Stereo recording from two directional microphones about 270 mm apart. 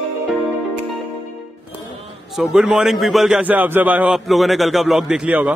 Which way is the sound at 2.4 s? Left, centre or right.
Centre.